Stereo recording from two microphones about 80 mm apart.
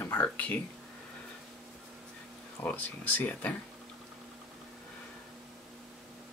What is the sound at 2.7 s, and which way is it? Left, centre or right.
Speech, left.